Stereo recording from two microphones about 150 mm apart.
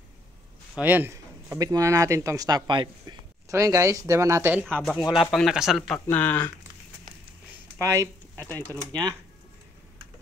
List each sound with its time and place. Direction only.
0.7 s speech: 10° right (ahead or behind)
5.3 s speech: centre (ahead or behind)
5.9 s speech: 10° left (ahead or behind)
7.8 s speech: 20° right (ahead or behind)
8.4 s speech: 15° left (ahead or behind)
8.6 s speech: 30° right (ahead or behind)